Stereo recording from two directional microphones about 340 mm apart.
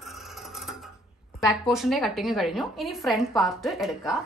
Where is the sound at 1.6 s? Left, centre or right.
Centre.